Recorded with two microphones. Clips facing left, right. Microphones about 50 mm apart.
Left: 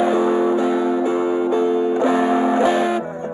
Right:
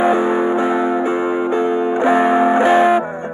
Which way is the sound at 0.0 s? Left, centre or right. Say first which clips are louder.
Right 2 dB; right.